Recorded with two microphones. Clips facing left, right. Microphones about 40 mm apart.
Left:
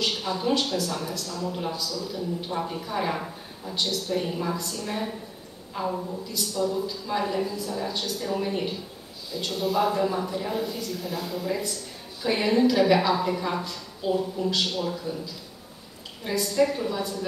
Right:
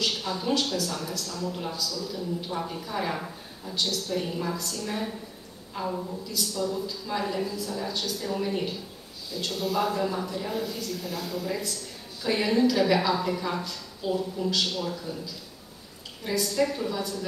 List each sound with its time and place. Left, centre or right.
0.0 s speech: centre
16.3 s speech: centre